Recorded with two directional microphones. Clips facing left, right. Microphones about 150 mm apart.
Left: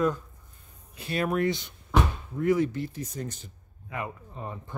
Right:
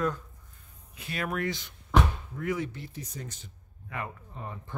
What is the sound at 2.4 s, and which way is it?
Speech, 35° left (ahead or behind).